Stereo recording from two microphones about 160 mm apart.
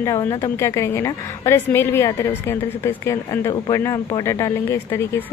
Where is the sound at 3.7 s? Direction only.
20° left (ahead or behind).